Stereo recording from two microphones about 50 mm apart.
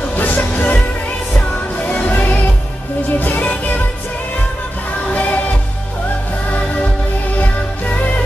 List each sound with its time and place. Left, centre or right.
0.1 s music: left
1.9 s music: left
5.1 s music: left
6.5 s music: left